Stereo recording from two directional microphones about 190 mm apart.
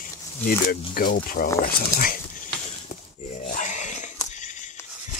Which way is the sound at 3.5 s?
40° left (ahead or behind).